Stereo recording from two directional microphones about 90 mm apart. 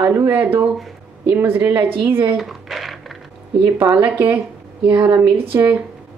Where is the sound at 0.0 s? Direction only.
20° right (ahead or behind).